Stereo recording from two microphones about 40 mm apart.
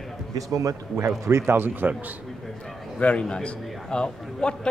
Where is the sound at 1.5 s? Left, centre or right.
Right.